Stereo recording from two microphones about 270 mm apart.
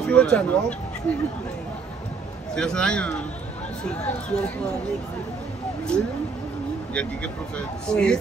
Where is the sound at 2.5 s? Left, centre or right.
Centre.